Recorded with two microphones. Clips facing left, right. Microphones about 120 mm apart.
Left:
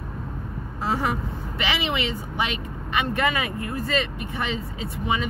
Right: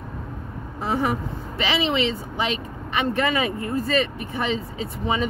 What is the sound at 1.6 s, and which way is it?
Speech, 25° right (ahead or behind).